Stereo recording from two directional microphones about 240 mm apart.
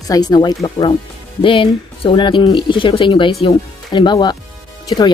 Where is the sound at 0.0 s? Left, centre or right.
Centre.